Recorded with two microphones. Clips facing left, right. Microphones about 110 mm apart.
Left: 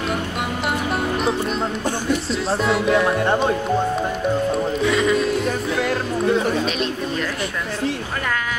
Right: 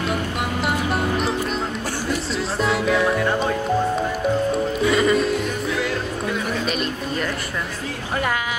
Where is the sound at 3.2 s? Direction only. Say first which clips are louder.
Left 2 dB; 25° left (ahead or behind).